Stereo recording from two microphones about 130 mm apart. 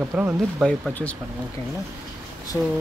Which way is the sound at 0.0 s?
20° right (ahead or behind).